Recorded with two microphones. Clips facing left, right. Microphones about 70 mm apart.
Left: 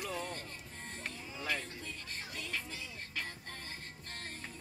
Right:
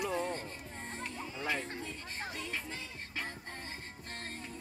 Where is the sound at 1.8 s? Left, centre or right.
Right.